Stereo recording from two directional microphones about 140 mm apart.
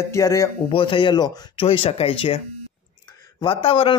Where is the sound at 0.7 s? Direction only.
40° left (ahead or behind).